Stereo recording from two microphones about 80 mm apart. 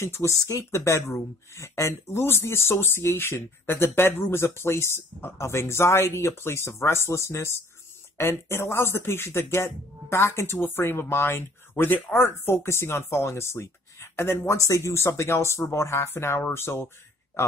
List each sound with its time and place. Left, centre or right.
0.0 s speech: left